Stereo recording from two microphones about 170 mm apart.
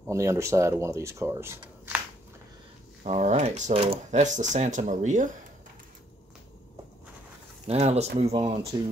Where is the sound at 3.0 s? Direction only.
40° right (ahead or behind).